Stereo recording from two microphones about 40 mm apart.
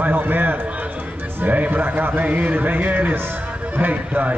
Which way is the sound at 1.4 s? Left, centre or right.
Right.